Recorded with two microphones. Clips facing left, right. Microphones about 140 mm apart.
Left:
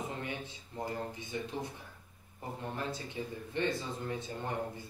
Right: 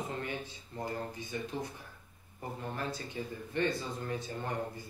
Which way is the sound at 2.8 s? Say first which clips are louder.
Even; 20° left (ahead or behind).